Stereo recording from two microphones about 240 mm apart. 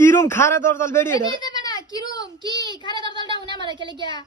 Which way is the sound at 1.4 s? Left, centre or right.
Centre.